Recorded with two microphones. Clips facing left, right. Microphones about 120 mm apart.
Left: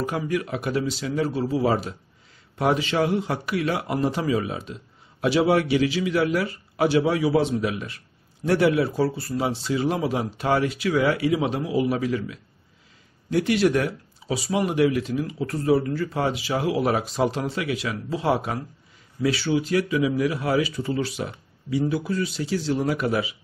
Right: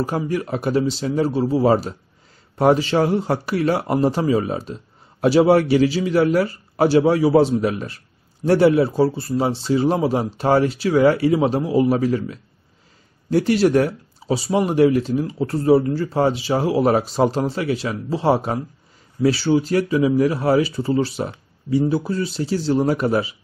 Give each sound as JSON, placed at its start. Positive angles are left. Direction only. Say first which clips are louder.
{"t": 0.0, "sound": "speech", "louder": "right 3 dB", "side_deg": -35}